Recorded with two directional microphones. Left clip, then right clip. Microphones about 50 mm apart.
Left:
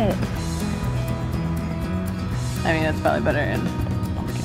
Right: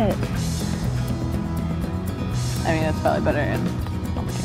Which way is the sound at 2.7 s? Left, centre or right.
Left.